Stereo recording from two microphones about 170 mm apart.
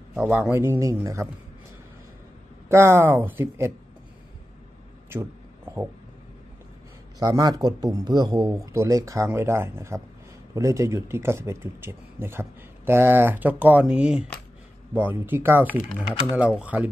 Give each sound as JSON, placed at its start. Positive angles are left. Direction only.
{"t": 0.1, "sound": "speech", "side_deg": -5}
{"t": 2.7, "sound": "speech", "side_deg": -15}
{"t": 5.1, "sound": "a sound", "side_deg": -15}
{"t": 7.2, "sound": "speech", "side_deg": -20}